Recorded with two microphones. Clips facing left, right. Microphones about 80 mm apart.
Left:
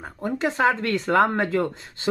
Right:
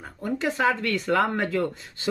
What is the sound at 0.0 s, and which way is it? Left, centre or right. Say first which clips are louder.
Speech: left 2 dB; left.